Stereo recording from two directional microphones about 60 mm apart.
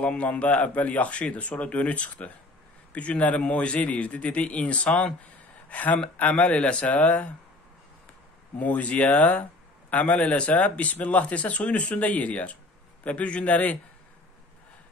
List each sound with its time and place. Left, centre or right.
0.0 s a man's voice: left
5.7 s a man's voice: left
8.5 s a man's voice: left